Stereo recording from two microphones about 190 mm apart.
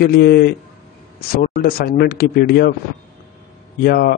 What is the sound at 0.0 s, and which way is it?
A man's voice, 55° left (ahead or behind).